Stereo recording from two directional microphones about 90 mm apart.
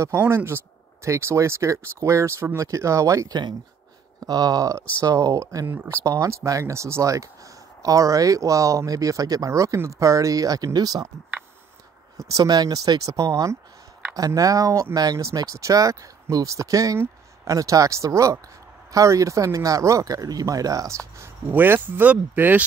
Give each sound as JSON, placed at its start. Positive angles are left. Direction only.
{"t": 0.3, "sound": "speech", "side_deg": -25}
{"t": 4.2, "sound": "speech", "side_deg": -45}
{"t": 12.2, "sound": "speech", "side_deg": -40}